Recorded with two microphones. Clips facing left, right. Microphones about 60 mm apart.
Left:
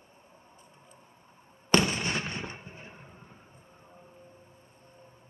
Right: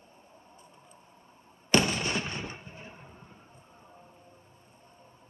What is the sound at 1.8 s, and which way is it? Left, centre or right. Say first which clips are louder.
Fireworks: even; centre.